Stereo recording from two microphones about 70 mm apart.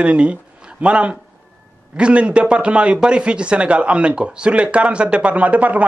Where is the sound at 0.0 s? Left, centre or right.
Centre.